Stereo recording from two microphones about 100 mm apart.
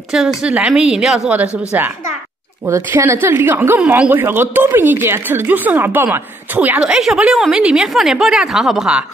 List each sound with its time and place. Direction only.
0.4 s a woman's voice: 10° right (ahead or behind)
1.7 s a woman's voice: 15° right (ahead or behind)
3.8 s a woman's voice: 10° right (ahead or behind)
4.1 s speech: 20° right (ahead or behind)
6.8 s a woman's voice: 5° right (ahead or behind)